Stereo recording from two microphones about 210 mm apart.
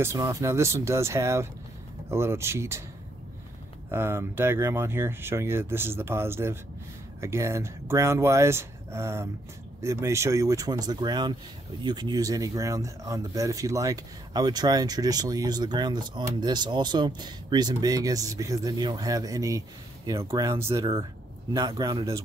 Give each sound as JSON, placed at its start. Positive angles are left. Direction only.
{"t": 0.0, "sound": "speech", "side_deg": -15}
{"t": 3.9, "sound": "a man's voice", "side_deg": -10}